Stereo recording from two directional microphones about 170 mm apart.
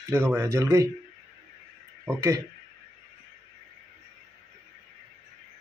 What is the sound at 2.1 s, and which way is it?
Speech, 15° right (ahead or behind).